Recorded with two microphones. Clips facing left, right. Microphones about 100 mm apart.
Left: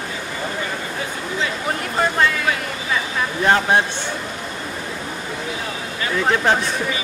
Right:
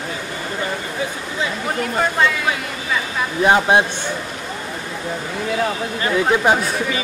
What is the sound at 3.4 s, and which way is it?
Speech, 15° right (ahead or behind).